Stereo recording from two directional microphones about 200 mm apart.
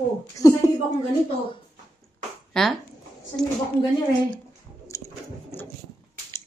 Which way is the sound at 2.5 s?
5° left (ahead or behind).